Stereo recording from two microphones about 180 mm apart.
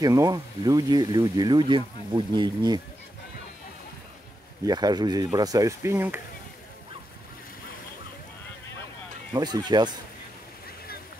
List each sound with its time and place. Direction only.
0.0 s speech: 20° right (ahead or behind)
4.6 s speech: 20° right (ahead or behind)
9.3 s speech: 25° right (ahead or behind)